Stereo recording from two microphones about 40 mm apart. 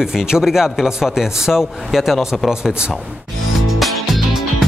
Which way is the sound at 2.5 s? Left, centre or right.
Centre.